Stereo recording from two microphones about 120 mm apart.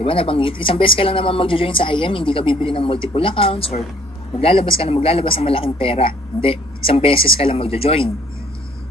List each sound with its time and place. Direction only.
0.0 s speech: 50° left (ahead or behind)